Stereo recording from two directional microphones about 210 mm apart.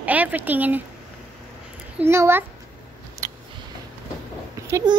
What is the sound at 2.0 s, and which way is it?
Speech, 10° right (ahead or behind).